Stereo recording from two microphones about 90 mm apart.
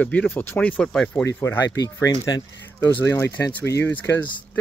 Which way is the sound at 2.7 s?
25° left (ahead or behind).